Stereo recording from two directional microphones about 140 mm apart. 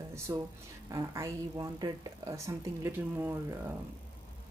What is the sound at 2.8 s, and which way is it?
Speech, 15° right (ahead or behind).